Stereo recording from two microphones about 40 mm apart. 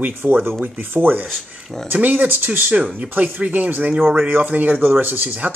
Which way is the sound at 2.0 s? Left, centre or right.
Right.